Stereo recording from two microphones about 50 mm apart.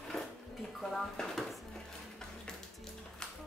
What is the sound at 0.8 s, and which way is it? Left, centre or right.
Speech, centre.